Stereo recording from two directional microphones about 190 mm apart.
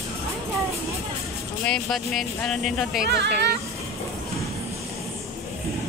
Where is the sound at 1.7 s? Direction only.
Centre (ahead or behind).